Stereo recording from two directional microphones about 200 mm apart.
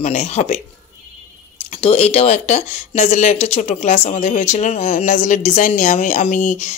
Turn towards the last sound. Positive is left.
turn(degrees=35)  # may be behind; listen again after turning